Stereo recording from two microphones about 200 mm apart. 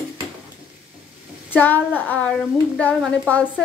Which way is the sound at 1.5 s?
10° left (ahead or behind).